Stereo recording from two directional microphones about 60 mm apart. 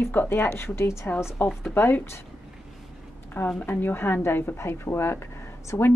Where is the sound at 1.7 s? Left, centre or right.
Left.